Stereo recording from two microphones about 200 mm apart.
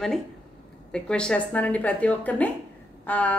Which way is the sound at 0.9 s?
5° left (ahead or behind).